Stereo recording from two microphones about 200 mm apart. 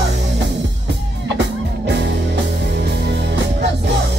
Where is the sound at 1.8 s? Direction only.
55° right (ahead or behind).